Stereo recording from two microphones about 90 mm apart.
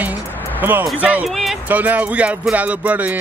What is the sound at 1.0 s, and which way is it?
Music, 15° right (ahead or behind).